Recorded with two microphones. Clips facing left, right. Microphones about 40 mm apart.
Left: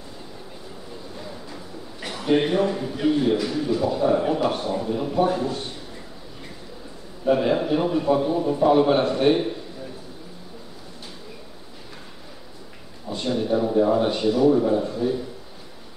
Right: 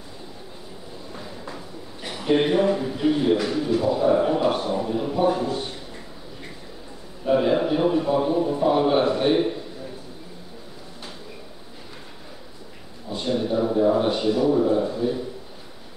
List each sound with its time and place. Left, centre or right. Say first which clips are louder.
2.5 s a man's voice: right 2 dB; centre
3.3 s a man's voice: right 1 dB; right
3.8 s a man's voice: right 1 dB; centre
7.2 s a man's voice: even; centre
13.1 s a sound: even; centre
13.6 s a man's voice: even; centre